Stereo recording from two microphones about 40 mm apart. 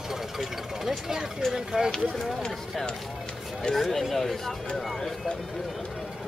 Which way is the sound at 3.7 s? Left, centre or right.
Centre.